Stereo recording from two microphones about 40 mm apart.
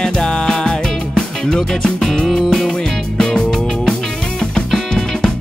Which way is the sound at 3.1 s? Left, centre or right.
Centre.